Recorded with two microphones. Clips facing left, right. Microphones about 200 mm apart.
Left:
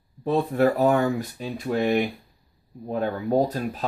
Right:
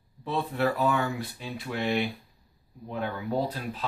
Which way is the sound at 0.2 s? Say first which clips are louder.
Left 7 dB; 45° left (ahead or behind).